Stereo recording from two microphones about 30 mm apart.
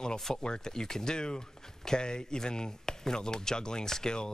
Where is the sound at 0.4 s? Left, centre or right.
Left.